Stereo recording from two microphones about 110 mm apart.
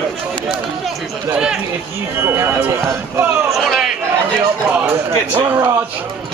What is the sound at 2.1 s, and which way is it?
Speech, 20° right (ahead or behind).